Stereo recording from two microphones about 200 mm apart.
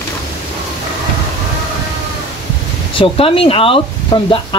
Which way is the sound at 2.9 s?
25° left (ahead or behind).